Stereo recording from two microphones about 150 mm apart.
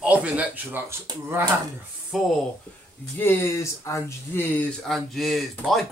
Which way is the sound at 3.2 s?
15° left (ahead or behind).